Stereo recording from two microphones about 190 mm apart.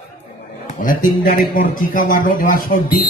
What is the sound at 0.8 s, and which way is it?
A man's voice, 50° left (ahead or behind).